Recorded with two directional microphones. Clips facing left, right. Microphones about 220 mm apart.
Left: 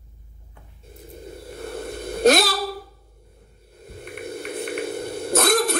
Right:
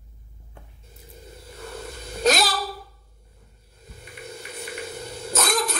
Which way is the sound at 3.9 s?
60° left (ahead or behind).